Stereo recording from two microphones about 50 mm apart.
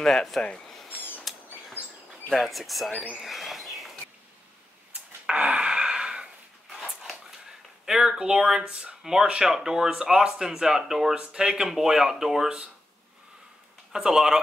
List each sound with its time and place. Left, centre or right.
0.0 s speech: centre
0.8 s a sound: left
2.3 s speech: centre
2.9 s speech: left
3.2 s bird: centre
5.2 s a sound: centre
7.8 s speech: centre
13.9 s speech: centre